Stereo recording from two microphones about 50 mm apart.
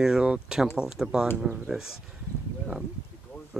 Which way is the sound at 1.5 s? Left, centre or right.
Centre.